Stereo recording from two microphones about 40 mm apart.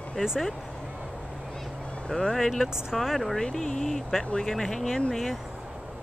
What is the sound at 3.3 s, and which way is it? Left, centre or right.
Speech, centre.